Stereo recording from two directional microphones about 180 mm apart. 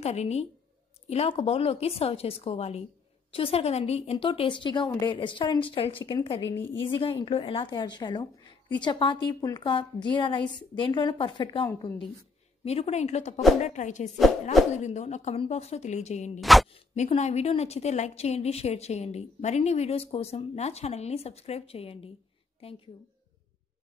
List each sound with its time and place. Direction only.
0.0 s a woman's voice: 35° left (ahead or behind)
6.4 s a woman's voice: 90° left
6.8 s a woman's voice: 30° left (ahead or behind)
16.3 s speech: centre (ahead or behind)
16.7 s a woman's voice: 35° left (ahead or behind)